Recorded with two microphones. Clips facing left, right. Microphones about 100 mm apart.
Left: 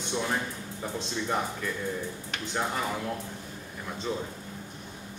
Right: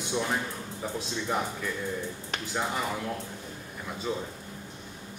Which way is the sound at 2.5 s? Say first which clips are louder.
Even; 5° right (ahead or behind).